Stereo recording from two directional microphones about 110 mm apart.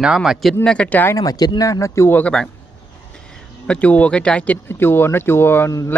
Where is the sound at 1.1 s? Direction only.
35° left (ahead or behind); by 2.4 s 15° left (ahead or behind).